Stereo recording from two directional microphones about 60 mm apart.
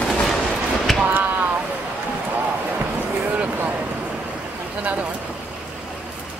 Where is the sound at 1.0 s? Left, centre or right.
Right.